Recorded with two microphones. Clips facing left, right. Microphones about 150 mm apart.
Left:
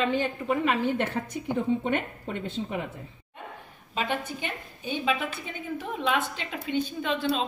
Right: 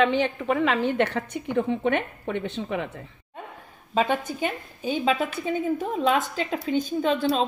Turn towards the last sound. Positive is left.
turn(degrees=-40)  # may be behind; listen again after turning